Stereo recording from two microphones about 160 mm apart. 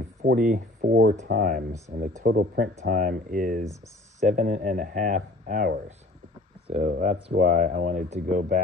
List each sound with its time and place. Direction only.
0.2 s speech: 80° right
0.5 s speech: 60° right (ahead or behind)
6.7 s speech: 45° right (ahead or behind)